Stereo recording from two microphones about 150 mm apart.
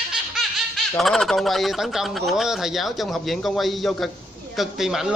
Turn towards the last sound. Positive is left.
turn(degrees=-5)  # may be behind; listen again after turning